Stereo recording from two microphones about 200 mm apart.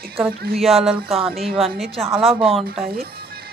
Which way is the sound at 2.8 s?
50° right (ahead or behind).